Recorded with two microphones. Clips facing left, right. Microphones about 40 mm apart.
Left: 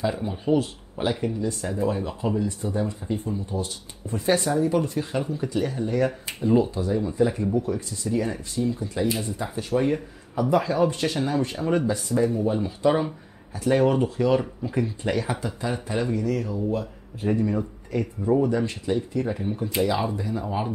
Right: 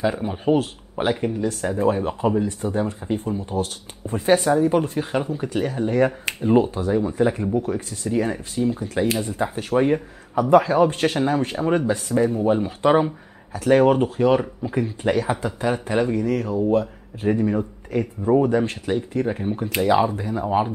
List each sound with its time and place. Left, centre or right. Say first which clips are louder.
0.0 s speech: right 4 dB; right
4.3 s speech: right 5 dB; right
8.7 s speech: right 4 dB; right
13.8 s speech: right 4 dB; right
17.3 s speech: right 3 dB; right